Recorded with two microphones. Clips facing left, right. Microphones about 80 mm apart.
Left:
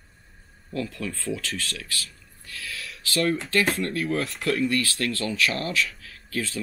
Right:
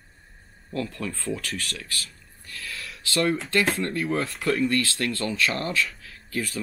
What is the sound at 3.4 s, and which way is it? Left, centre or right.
Speech, centre.